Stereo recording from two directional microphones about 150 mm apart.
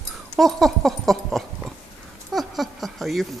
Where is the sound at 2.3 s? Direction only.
Centre (ahead or behind).